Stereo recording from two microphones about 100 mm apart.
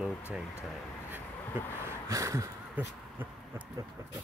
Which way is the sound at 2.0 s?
30° right (ahead or behind).